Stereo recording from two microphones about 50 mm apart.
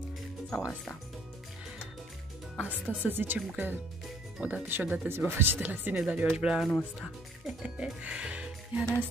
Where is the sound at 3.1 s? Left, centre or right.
Right.